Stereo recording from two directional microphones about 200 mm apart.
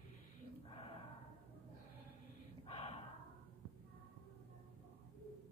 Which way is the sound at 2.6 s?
30° left (ahead or behind).